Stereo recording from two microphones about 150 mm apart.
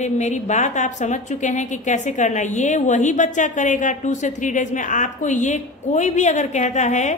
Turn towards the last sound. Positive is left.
turn(degrees=50)  # may be behind; listen again after turning